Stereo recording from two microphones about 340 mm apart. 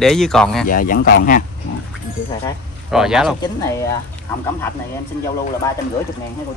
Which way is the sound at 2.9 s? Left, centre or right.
Centre.